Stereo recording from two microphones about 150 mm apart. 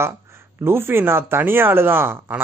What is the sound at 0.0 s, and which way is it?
Speech, 15° right (ahead or behind).